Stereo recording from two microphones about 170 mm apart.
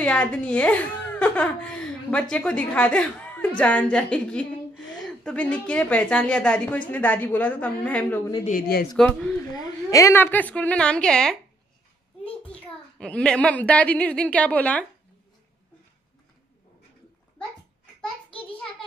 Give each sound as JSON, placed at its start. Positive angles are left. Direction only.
{"t": 0.0, "sound": "speech", "side_deg": 5}
{"t": 8.5, "sound": "speech", "side_deg": 60}
{"t": 8.9, "sound": "speech", "side_deg": 5}
{"t": 9.7, "sound": "speech", "side_deg": 20}
{"t": 12.5, "sound": "a woman's voice", "side_deg": 5}